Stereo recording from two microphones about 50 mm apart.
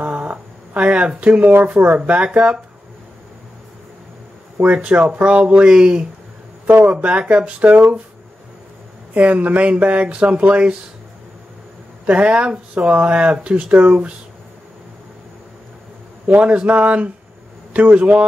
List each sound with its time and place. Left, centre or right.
0.0 s a sound: right
1.5 s speech: right
4.6 s speech: right
6.6 s speech: right
7.7 s speech: right
9.1 s speech: right
12.1 s speech: right
16.3 s speech: right